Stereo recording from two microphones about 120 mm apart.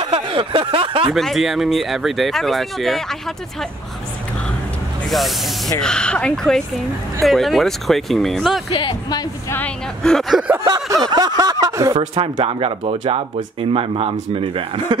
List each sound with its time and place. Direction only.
0.3 s a sound: 45° right (ahead or behind)
1.1 s speech: centre (ahead or behind)
5.8 s speech: 5° left (ahead or behind)
8.7 s speech: 40° left (ahead or behind)
10.0 s speech: centre (ahead or behind)
10.7 s a sound: 35° right (ahead or behind)
11.6 s speech: 25° right (ahead or behind)
11.9 s speech: 50° right (ahead or behind)